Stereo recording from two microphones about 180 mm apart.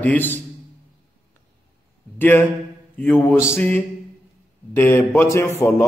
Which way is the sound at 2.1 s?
10° left (ahead or behind).